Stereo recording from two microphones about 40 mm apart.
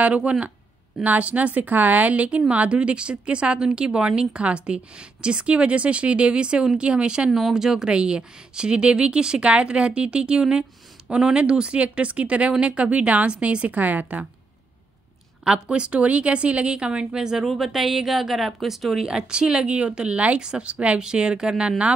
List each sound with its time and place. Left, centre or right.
0.0 s a woman's voice: right
1.0 s a woman's voice: right
7.2 s a woman's voice: centre; by 13.7 s right
13.7 s a woman's voice: right
15.4 s a woman's voice: right; by 19.0 s centre
19.0 s a woman's voice: right